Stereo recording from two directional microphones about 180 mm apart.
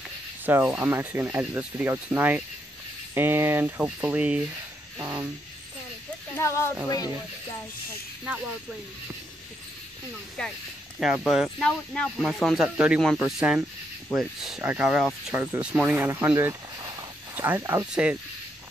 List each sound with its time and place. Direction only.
0.5 s speech: 10° right (ahead or behind)
4.9 s a sound: 10° right (ahead or behind)
6.3 s speech: 15° left (ahead or behind)
10.4 s speech: 5° left (ahead or behind)
15.4 s speech: 15° right (ahead or behind)